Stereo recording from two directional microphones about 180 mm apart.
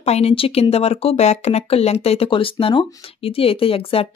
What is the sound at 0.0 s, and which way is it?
Speech, 35° left (ahead or behind).